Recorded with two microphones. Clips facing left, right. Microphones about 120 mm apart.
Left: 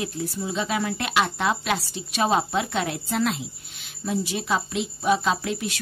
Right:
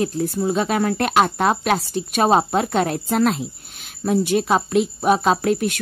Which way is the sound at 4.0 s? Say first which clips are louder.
Right 9 dB; 55° right (ahead or behind).